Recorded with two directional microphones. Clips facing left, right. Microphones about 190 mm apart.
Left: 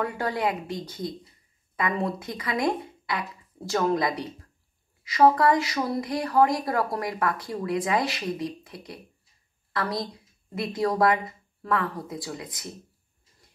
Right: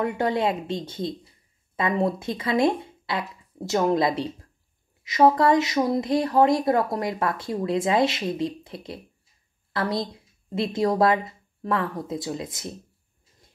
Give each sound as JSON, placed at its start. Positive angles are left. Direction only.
{"t": 0.0, "sound": "a woman's voice", "side_deg": -25}